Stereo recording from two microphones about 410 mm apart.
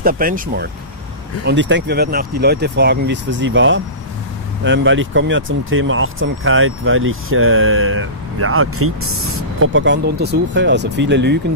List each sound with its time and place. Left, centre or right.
0.0 s speech: right